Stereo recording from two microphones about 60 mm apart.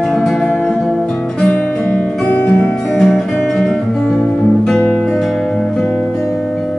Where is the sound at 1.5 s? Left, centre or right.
Left.